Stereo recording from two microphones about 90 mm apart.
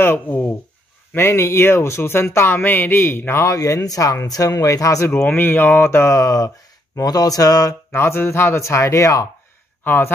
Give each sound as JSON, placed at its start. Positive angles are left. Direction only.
{"t": 0.0, "sound": "speech", "side_deg": 25}
{"t": 5.1, "sound": "speech", "side_deg": 20}
{"t": 7.9, "sound": "speech", "side_deg": 25}
{"t": 9.8, "sound": "speech", "side_deg": 20}